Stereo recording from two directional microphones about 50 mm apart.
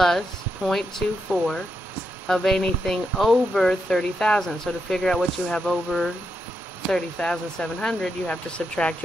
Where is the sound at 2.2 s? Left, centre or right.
Centre.